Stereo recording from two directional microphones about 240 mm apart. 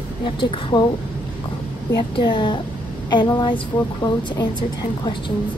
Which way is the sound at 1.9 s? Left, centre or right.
Centre.